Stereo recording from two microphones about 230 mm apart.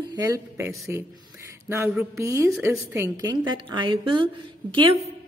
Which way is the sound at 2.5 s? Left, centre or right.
Centre.